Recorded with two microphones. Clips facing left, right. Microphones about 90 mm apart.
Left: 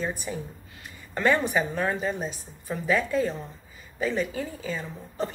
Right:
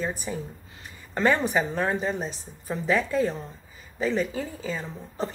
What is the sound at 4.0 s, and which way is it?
A woman's voice, 30° right (ahead or behind).